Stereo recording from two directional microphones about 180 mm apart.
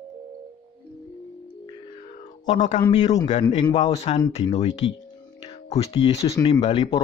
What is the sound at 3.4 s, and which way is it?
Speech, 25° left (ahead or behind).